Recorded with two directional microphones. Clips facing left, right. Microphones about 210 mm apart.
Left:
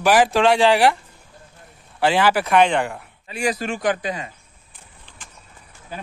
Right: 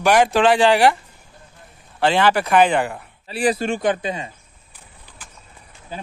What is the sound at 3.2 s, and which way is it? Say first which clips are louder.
Speech: right 4 dB; 35° right (ahead or behind).